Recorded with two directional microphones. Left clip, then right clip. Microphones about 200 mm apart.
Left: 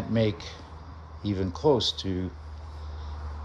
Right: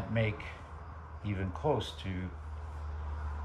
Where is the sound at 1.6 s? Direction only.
15° left (ahead or behind).